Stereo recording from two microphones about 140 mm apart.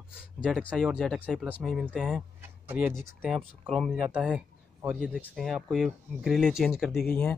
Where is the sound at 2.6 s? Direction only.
15° right (ahead or behind).